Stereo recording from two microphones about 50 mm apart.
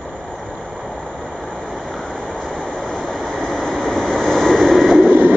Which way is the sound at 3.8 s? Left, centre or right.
Centre.